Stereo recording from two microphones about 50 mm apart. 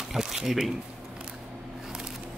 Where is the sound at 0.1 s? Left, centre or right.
Centre.